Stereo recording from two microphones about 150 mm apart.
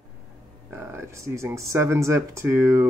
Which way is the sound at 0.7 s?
15° right (ahead or behind).